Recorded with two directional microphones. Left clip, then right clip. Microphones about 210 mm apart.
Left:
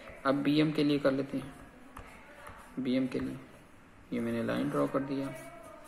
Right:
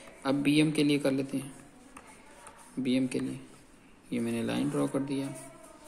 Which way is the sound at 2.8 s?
45° right (ahead or behind).